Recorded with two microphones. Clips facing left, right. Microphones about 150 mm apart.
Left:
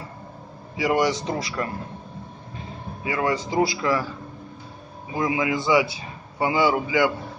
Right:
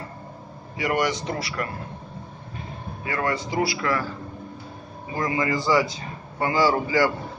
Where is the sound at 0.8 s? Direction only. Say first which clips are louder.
Left 3 dB; 15° left (ahead or behind).